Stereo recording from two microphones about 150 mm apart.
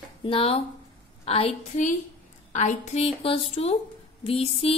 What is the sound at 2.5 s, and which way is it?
A woman's voice, 50° left (ahead or behind).